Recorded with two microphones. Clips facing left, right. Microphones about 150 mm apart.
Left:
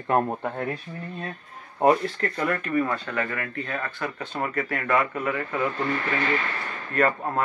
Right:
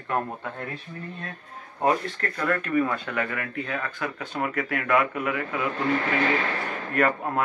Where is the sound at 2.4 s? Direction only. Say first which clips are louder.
Right 1 dB; 5° left (ahead or behind).